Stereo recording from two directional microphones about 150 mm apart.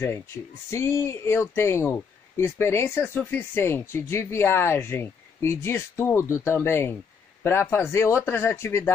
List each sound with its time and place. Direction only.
0.0 s speech: 15° left (ahead or behind)